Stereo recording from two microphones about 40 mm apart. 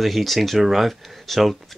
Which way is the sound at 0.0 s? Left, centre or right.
Centre.